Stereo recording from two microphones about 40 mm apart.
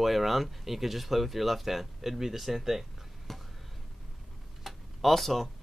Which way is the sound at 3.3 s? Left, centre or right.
Centre.